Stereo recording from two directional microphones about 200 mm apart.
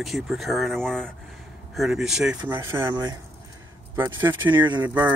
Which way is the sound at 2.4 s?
15° right (ahead or behind).